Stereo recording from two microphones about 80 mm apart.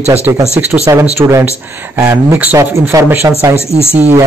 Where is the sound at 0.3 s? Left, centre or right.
Right.